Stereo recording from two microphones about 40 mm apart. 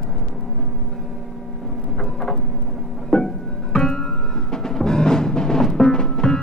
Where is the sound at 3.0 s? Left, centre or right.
Centre.